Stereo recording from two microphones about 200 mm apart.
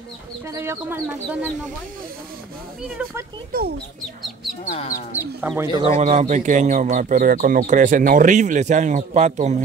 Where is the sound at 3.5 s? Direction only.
50° right (ahead or behind).